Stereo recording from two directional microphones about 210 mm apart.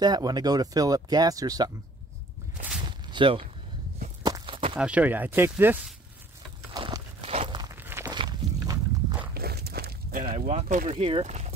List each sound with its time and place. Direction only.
0.0 s speech: 20° right (ahead or behind)
2.8 s a sound: 20° right (ahead or behind)
4.2 s walk: 20° right (ahead or behind)
4.7 s speech: 5° right (ahead or behind)
6.7 s walk: 20° right (ahead or behind)
7.7 s walk: 10° right (ahead or behind)
9.3 s walk: 45° right (ahead or behind); by 11.5 s 30° right (ahead or behind)